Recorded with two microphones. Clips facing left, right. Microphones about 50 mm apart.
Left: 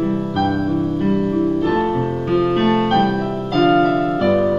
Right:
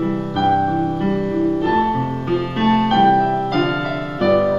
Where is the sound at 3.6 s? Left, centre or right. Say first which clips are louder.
Left 7 dB; centre.